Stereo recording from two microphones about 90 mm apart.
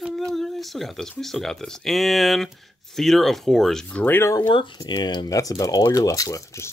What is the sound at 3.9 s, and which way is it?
Speech, 25° left (ahead or behind).